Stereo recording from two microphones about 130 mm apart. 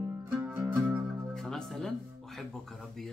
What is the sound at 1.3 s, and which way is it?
Music, 5° left (ahead or behind).